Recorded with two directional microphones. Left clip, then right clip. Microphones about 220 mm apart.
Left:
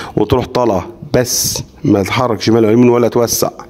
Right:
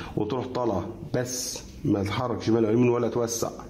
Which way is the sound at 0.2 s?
35° left (ahead or behind).